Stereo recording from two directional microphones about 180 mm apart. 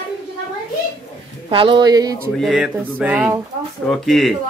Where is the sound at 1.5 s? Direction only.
30° right (ahead or behind).